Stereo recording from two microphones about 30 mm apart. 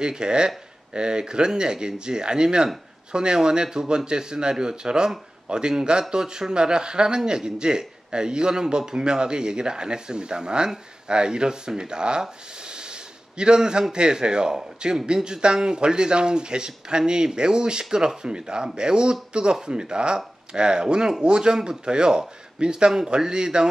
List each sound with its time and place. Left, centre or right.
0.0 s speech: right